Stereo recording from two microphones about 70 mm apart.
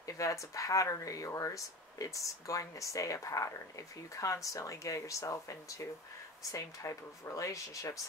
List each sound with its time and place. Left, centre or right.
0.0 s speech: left